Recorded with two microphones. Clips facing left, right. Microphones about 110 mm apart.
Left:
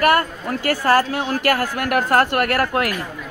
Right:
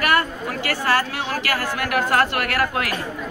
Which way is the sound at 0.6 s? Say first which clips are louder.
Left 5 dB; 45° left (ahead or behind).